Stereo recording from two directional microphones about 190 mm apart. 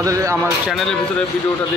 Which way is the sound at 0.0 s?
15° right (ahead or behind).